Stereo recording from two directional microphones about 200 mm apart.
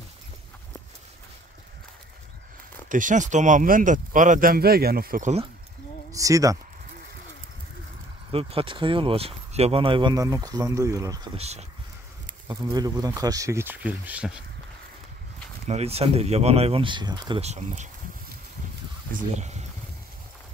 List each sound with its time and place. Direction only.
2.9 s speech: 40° right (ahead or behind)
6.1 s speech: 15° right (ahead or behind)
8.3 s speech: 30° right (ahead or behind)
11.3 s speech: 30° right (ahead or behind)
12.4 s speech: 20° right (ahead or behind)
15.7 s speech: 30° right (ahead or behind)
19.3 s speech: 35° right (ahead or behind)